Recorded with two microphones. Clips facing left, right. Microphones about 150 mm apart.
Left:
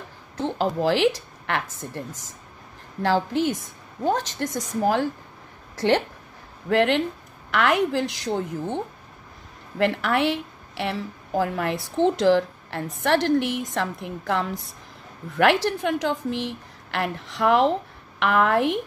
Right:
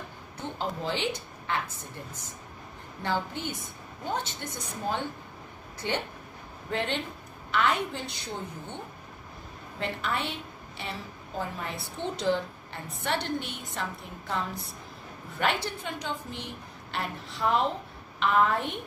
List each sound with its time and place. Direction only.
0.4 s a woman's voice: 80° left
3.0 s a woman's voice: 90° left
9.8 s a woman's voice: 75° left (ahead or behind)